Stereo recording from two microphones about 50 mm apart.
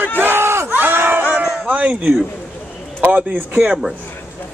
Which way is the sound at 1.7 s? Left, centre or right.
Right.